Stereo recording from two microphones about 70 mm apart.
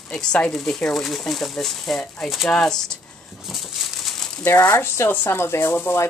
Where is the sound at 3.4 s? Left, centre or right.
Centre.